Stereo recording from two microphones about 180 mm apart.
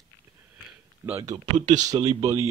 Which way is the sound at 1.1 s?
20° right (ahead or behind).